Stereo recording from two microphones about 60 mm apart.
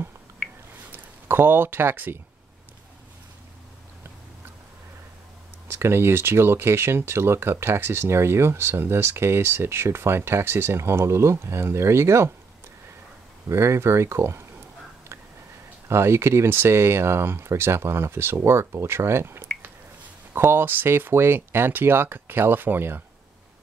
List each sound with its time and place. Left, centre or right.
0.4 s a sound: centre
0.9 s speech: right
5.7 s speech: right
13.5 s speech: right
15.9 s speech: right